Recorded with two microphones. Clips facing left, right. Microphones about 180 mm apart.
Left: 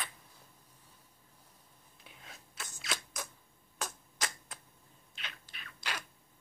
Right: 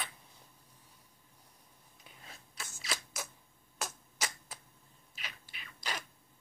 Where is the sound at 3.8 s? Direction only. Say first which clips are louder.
Even; 10° right (ahead or behind).